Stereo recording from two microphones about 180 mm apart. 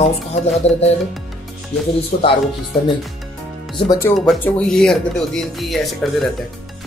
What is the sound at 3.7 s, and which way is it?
Speech, 25° left (ahead or behind).